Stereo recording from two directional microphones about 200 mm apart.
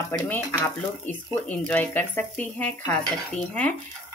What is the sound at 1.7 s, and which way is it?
Speech, 10° left (ahead or behind).